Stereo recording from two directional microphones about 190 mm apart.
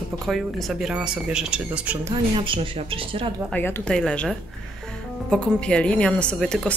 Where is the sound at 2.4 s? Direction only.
25° right (ahead or behind).